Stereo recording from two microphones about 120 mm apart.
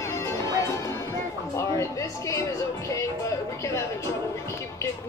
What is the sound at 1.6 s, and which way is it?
Speech, 25° left (ahead or behind).